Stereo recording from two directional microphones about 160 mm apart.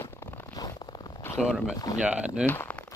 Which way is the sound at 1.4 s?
5° right (ahead or behind).